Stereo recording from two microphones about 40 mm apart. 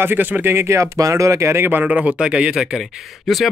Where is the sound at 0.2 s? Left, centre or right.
Right.